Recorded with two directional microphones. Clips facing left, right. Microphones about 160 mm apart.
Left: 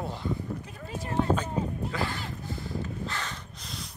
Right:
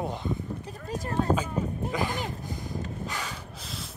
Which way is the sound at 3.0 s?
10° right (ahead or behind).